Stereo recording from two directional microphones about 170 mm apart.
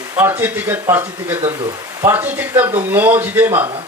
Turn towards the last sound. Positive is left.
turn(degrees=-10)  # may be behind; listen again after turning